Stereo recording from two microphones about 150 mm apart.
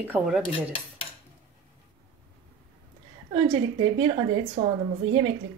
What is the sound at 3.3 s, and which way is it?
A woman's voice, 35° right (ahead or behind).